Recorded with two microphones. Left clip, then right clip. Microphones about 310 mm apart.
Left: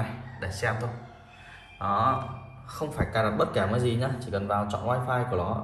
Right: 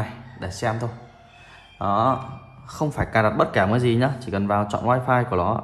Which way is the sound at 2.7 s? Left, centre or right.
Centre.